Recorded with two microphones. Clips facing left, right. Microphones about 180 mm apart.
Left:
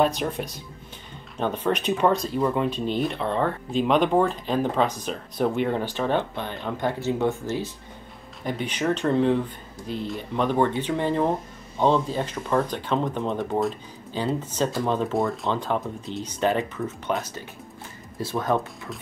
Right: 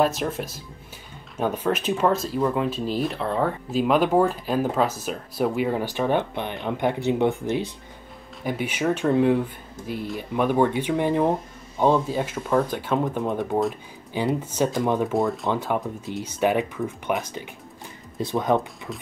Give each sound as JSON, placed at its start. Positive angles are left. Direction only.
{"t": 0.0, "sound": "speech", "side_deg": 0}
{"t": 14.1, "sound": "speech", "side_deg": -15}
{"t": 15.1, "sound": "speech", "side_deg": 0}
{"t": 15.5, "sound": "speech", "side_deg": -10}